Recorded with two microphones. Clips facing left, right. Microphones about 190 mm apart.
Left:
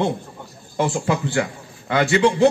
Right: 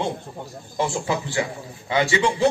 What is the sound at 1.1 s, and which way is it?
A man's voice, 55° left (ahead or behind).